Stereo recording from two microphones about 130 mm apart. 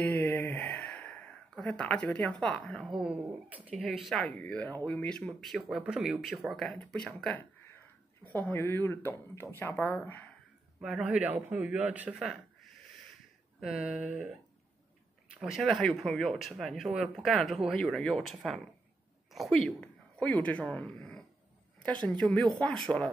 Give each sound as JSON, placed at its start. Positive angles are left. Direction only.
{"t": 0.0, "sound": "a sound", "side_deg": 10}
{"t": 1.6, "sound": "speech", "side_deg": 10}
{"t": 3.0, "sound": "a man's voice", "side_deg": -10}
{"t": 7.3, "sound": "speech", "side_deg": 15}
{"t": 10.8, "sound": "a man's voice", "side_deg": -5}
{"t": 13.6, "sound": "speech", "side_deg": -5}
{"t": 15.3, "sound": "speech", "side_deg": -5}